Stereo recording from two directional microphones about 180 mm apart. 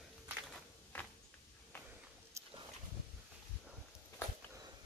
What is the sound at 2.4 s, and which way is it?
Wild animals, 15° right (ahead or behind).